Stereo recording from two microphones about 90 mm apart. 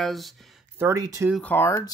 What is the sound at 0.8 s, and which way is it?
Speech, 40° right (ahead or behind).